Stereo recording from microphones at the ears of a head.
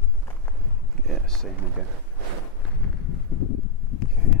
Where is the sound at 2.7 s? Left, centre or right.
Left.